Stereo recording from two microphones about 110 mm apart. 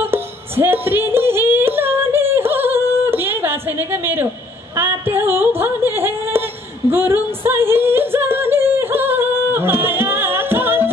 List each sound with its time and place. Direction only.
0.0 s music: 20° right (ahead or behind)
4.7 s a sound: 20° right (ahead or behind)
6.9 s singing: 20° right (ahead or behind)